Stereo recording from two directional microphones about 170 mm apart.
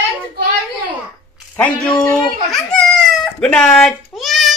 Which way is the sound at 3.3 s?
5° left (ahead or behind).